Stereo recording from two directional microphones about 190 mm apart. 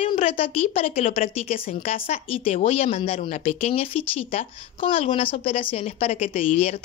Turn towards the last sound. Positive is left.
turn(degrees=35)  # may be behind; listen again after turning